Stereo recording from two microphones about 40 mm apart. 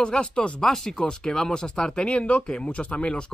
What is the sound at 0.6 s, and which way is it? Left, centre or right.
Speech, centre.